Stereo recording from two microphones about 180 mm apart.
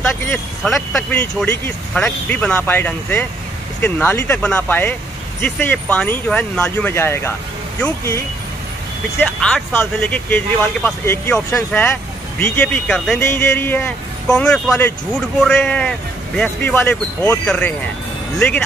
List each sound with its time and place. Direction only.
0.0 s speech: 5° left (ahead or behind)
9.2 s speech: 5° left (ahead or behind)